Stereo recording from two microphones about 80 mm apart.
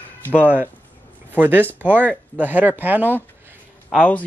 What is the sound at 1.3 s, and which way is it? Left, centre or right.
A man's voice, right.